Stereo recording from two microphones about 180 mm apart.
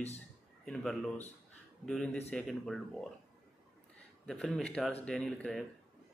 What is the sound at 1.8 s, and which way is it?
Speech, 5° left (ahead or behind).